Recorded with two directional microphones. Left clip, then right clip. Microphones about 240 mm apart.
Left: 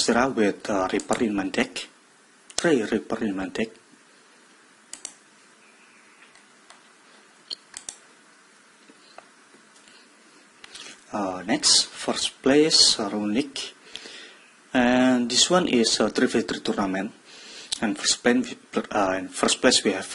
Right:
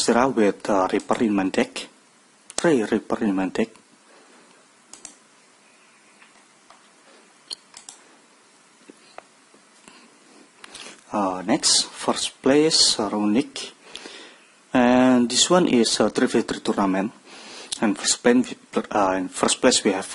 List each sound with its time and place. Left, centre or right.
0.0 s speech: right
10.6 s speech: right